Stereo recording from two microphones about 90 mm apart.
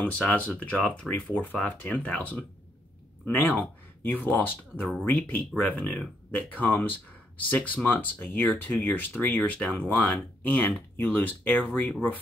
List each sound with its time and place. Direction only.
0.0 s speech: 20° left (ahead or behind)